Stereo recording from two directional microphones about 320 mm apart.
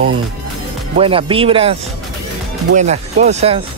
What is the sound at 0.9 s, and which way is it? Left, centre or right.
Speech, centre.